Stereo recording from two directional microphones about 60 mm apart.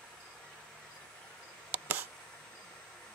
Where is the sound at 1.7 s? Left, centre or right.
Right.